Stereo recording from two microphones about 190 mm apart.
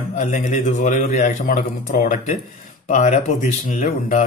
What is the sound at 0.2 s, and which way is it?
A man's voice, 40° left (ahead or behind).